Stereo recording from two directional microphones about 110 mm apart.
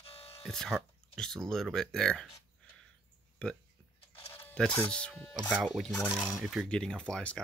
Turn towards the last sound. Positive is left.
turn(degrees=10)  # may be behind; listen again after turning